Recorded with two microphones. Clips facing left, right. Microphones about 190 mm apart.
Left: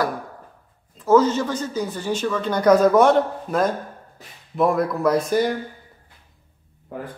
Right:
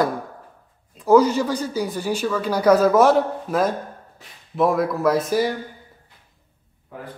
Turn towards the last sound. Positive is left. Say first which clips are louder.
# even
turn(degrees=-5)  # may be behind; listen again after turning